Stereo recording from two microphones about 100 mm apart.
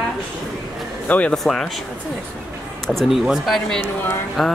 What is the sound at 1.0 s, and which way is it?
Speech, 15° left (ahead or behind).